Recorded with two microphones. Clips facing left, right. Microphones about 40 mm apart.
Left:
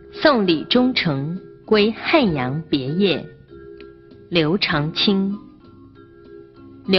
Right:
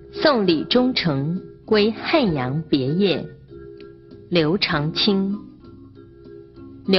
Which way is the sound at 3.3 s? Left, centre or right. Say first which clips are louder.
Even; left.